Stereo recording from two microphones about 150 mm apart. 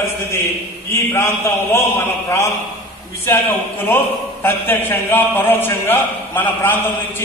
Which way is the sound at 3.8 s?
15° left (ahead or behind).